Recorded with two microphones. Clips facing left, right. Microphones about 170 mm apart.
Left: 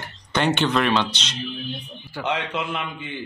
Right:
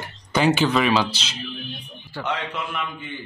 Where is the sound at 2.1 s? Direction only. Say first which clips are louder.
Left 2 dB; 15° left (ahead or behind).